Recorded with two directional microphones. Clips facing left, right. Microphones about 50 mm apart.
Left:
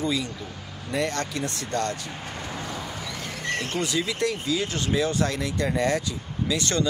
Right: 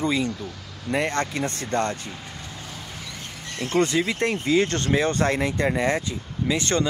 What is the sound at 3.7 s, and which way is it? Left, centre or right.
Speech, right.